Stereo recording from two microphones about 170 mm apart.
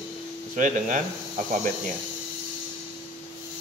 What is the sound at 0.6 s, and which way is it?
Speech, 50° right (ahead or behind).